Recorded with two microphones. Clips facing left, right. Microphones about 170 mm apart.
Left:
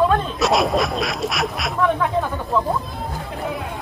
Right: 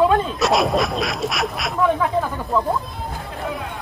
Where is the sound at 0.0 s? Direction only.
5° right (ahead or behind).